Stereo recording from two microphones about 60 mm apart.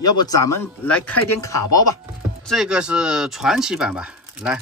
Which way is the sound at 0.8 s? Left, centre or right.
Centre.